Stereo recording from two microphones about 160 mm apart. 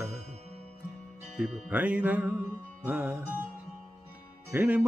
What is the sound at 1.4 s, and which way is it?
Music, 5° right (ahead or behind).